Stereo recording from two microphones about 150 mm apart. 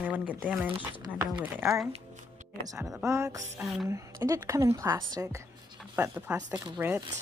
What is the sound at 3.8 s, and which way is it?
A woman's voice, 20° right (ahead or behind).